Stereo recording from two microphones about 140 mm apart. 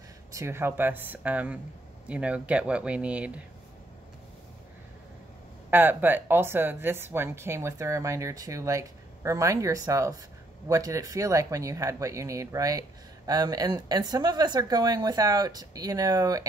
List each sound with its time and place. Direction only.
0.3 s speech: 20° right (ahead or behind)
5.7 s speech: 15° right (ahead or behind)